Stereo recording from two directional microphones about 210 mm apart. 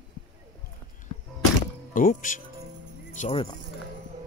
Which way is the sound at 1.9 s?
40° left (ahead or behind).